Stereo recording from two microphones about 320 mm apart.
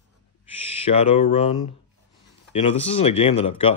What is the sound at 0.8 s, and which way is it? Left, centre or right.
Speech, centre.